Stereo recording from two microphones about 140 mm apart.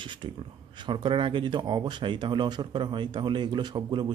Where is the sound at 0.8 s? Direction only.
35° right (ahead or behind).